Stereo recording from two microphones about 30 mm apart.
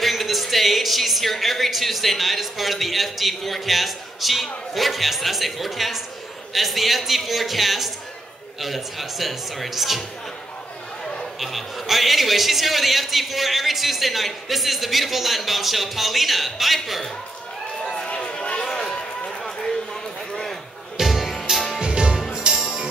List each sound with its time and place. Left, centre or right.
0.0 s a woman's voice: centre
11.3 s a man's voice: centre
18.0 s run: left
18.6 s run: left
19.4 s a sound: centre
21.0 s music: centre
21.8 s music: right